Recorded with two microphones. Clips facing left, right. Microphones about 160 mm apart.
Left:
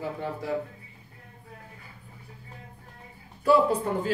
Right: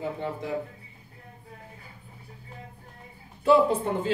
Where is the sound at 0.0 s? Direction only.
20° right (ahead or behind).